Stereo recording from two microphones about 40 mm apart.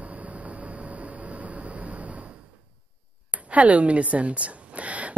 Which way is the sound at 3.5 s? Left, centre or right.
Right.